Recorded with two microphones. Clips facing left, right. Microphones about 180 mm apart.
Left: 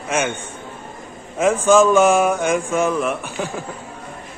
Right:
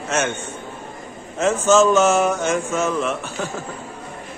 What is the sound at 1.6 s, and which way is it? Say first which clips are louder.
Speech: left 2 dB; 10° left (ahead or behind).